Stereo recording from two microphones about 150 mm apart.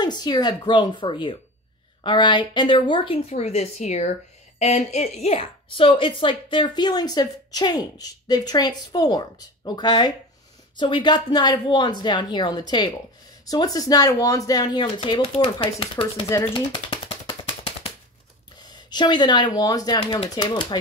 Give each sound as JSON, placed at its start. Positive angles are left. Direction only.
{"t": 0.0, "sound": "a woman's voice", "side_deg": 30}
{"t": 16.5, "sound": "a sound", "side_deg": 35}
{"t": 18.6, "sound": "a woman's voice", "side_deg": 30}